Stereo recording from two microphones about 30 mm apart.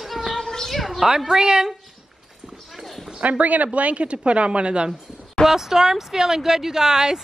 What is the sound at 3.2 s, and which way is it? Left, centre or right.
A woman's voice, right.